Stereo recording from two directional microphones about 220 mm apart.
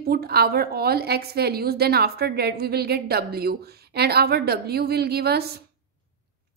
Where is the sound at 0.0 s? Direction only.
45° right (ahead or behind).